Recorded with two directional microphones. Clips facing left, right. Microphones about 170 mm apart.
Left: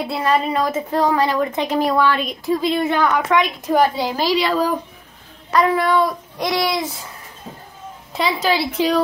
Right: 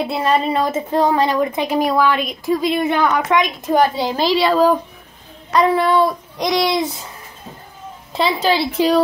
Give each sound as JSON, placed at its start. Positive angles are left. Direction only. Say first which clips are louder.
{"t": 0.0, "sound": "a woman's voice", "louder": "right 2 dB", "side_deg": -20}
{"t": 1.5, "sound": "a woman's voice", "louder": "right 1 dB", "side_deg": -10}
{"t": 4.4, "sound": "a woman's voice", "louder": "right 5 dB", "side_deg": -30}
{"t": 8.1, "sound": "a woman's voice", "louder": "right 2 dB", "side_deg": -30}